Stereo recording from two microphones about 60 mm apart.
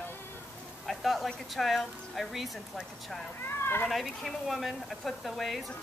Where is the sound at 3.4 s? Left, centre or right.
Left.